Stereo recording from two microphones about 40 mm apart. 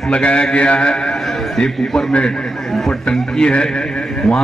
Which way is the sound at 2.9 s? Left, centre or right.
Left.